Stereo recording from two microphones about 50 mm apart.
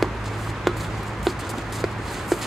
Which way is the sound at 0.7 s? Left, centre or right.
Centre.